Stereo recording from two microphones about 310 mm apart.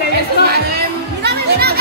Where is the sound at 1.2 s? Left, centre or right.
Right.